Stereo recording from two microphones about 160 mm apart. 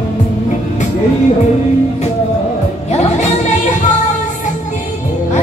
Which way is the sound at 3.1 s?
50° left (ahead or behind).